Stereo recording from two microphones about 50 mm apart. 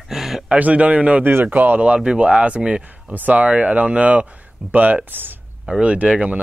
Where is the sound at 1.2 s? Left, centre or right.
Right.